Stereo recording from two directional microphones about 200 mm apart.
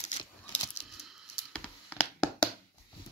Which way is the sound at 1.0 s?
Centre (ahead or behind).